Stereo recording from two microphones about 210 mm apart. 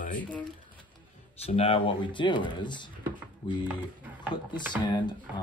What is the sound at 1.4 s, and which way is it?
Speech, 30° left (ahead or behind).